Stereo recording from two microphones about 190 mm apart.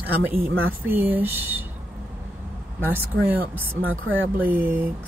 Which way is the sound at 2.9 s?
10° right (ahead or behind).